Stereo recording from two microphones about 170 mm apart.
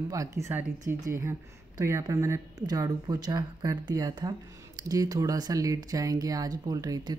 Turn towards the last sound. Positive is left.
turn(degrees=-25)  # may be behind; listen again after turning